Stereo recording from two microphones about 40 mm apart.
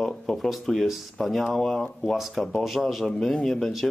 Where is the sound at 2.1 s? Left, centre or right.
Centre.